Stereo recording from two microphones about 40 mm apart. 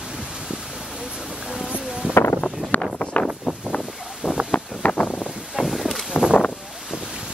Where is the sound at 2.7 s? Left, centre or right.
Left.